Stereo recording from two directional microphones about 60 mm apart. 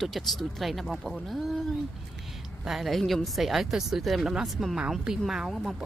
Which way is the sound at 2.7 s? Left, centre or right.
Centre.